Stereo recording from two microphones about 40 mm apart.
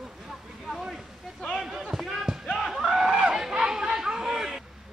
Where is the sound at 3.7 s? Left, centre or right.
Centre.